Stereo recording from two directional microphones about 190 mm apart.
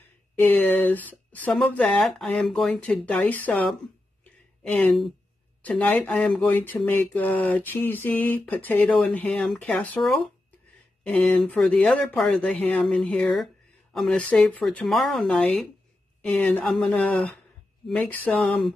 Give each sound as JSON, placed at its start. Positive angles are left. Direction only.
{"t": 0.4, "sound": "speech", "side_deg": 10}
{"t": 4.2, "sound": "a sound", "side_deg": 5}
{"t": 5.7, "sound": "speech", "side_deg": 5}